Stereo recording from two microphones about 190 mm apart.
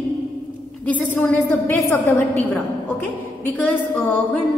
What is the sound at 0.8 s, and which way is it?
A woman's voice, 10° left (ahead or behind).